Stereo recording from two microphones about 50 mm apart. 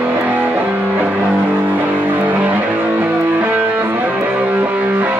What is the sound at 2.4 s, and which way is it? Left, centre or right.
Music, right.